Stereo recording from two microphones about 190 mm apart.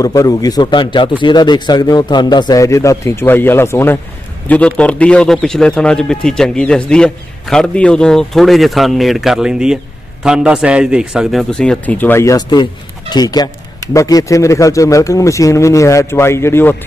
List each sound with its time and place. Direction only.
0.0 s a man's voice: 20° left (ahead or behind)